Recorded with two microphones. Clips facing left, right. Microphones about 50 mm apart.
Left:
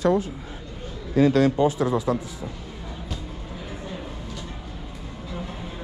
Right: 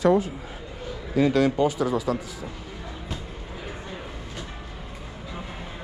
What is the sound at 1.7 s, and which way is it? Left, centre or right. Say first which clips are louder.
Speech: left 2 dB; left.